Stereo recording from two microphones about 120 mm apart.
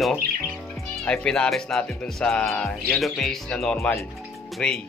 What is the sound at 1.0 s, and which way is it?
Speech, 5° left (ahead or behind).